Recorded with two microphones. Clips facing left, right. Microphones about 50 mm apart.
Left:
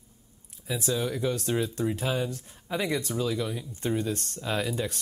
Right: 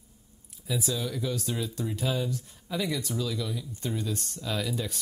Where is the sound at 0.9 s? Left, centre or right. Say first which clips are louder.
Left 3 dB; left.